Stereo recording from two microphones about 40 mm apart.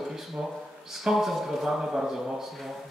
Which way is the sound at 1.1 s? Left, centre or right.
Centre.